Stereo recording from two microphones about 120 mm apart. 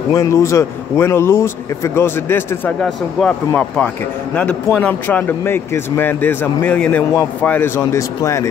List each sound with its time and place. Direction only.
0.1 s a man's voice: 25° left (ahead or behind)
2.8 s speech: 5° left (ahead or behind); by 8.5 s 25° left (ahead or behind)